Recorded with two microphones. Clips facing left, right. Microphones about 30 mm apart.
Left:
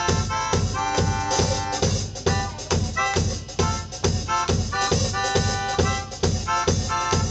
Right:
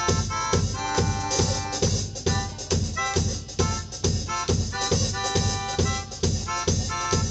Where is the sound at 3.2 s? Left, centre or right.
Centre.